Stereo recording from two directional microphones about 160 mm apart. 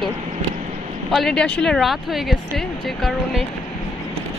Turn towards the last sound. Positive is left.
turn(degrees=0)  # may be behind; listen again after turning